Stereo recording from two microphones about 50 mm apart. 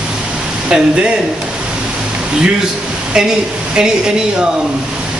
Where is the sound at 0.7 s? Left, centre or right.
Right.